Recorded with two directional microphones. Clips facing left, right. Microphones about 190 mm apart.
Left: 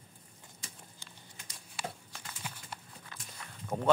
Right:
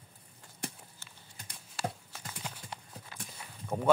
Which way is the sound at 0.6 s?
60° right (ahead or behind).